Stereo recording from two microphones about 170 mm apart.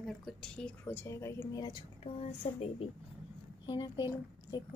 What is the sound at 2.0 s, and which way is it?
A woman's voice, 35° left (ahead or behind).